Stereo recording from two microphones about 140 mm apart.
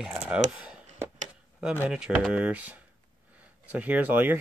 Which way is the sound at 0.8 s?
60° right (ahead or behind).